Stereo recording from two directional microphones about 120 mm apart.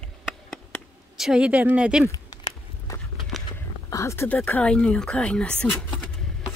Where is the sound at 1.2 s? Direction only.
5° right (ahead or behind).